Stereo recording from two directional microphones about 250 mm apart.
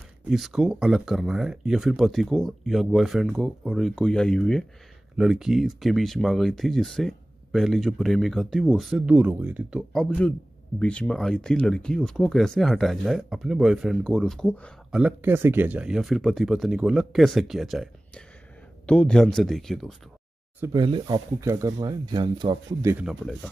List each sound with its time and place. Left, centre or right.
0.3 s speech: centre
20.6 s speech: centre